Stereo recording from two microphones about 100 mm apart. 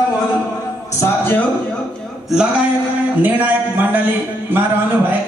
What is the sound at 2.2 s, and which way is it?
Speech, 5° right (ahead or behind).